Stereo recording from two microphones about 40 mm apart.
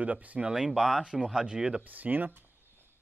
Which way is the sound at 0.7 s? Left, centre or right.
Centre.